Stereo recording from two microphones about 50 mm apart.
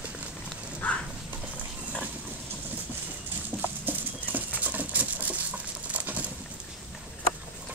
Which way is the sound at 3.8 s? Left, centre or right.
Right.